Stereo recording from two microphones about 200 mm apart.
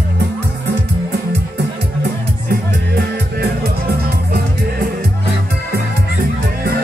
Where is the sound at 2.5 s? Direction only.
50° right (ahead or behind).